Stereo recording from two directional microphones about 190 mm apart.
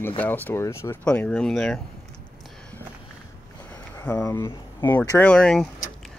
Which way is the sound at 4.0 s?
10° left (ahead or behind).